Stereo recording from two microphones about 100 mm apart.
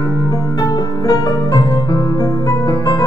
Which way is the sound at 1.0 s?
40° left (ahead or behind).